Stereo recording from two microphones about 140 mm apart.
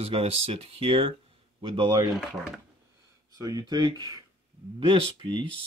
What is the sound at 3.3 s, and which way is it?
Speech, 25° right (ahead or behind).